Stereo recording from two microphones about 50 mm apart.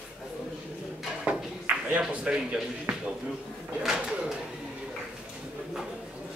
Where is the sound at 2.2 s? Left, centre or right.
Centre.